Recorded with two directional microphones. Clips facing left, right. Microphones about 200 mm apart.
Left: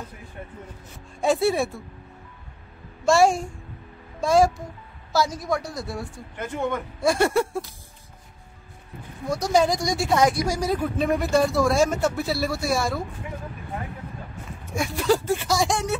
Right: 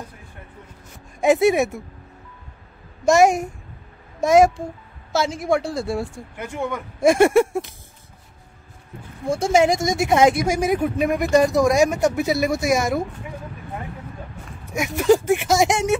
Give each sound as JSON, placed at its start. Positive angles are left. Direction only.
{"t": 1.2, "sound": "speech", "side_deg": -20}
{"t": 3.1, "sound": "speech", "side_deg": -20}
{"t": 6.3, "sound": "speech", "side_deg": -10}
{"t": 7.0, "sound": "speech", "side_deg": -20}
{"t": 9.3, "sound": "speech", "side_deg": -25}
{"t": 15.0, "sound": "speech", "side_deg": -20}